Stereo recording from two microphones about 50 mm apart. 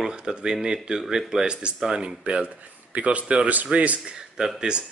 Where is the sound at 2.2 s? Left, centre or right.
Right.